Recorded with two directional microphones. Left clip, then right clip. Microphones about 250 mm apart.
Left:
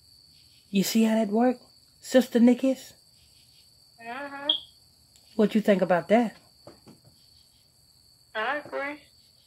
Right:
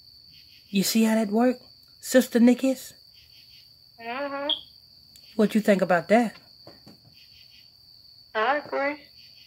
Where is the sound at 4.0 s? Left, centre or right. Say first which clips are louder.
Right 4 dB; right.